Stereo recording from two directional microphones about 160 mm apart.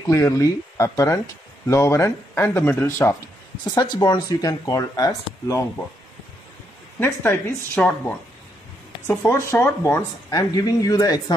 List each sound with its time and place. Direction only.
0.0 s speech: 20° left (ahead or behind)
3.6 s speech: 25° left (ahead or behind)
7.0 s speech: 15° left (ahead or behind)
9.0 s speech: 10° left (ahead or behind)